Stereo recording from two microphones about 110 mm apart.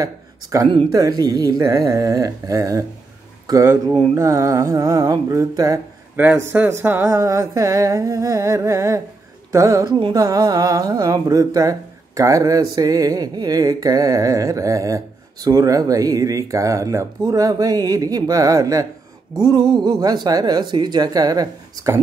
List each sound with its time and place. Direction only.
0.0 s speech: 30° right (ahead or behind)
4.1 s speech: 30° right (ahead or behind)
6.1 s speech: 20° right (ahead or behind)
6.8 s humming: 20° right (ahead or behind)
9.8 s a sound: 50° right (ahead or behind)
10.1 s speech: 35° right (ahead or behind)
19.3 s a sound: 45° right (ahead or behind)
20.2 s speech: 35° right (ahead or behind)